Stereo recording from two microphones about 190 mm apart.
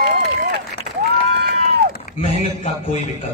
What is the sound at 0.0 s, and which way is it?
Run, 55° right (ahead or behind).